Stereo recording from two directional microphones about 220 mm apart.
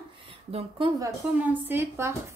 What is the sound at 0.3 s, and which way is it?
A woman's voice, 25° right (ahead or behind).